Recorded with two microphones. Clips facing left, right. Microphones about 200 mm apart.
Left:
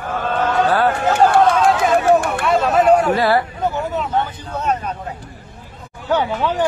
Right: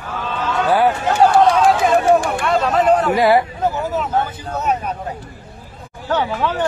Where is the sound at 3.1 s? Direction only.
15° right (ahead or behind).